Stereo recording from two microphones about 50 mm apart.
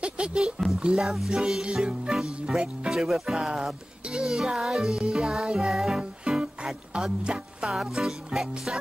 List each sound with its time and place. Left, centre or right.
0.0 s speech: centre
1.0 s speech: centre
5.9 s music: centre